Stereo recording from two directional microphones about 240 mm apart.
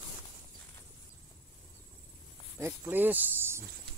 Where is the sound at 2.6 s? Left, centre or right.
Centre.